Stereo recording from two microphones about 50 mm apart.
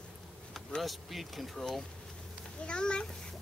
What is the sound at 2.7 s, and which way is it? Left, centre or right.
Speech, centre.